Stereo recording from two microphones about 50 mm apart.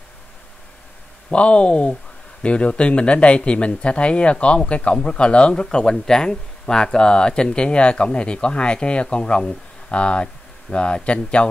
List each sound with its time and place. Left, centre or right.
1.3 s speech: left